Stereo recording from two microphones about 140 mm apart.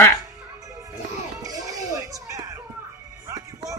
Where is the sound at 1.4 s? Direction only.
25° right (ahead or behind).